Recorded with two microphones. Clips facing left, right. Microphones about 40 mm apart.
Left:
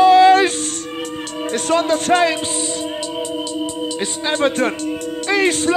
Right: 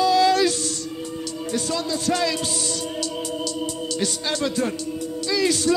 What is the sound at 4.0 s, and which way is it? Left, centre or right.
Speech, left.